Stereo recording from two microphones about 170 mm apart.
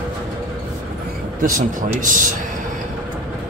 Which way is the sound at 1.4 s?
50° right (ahead or behind).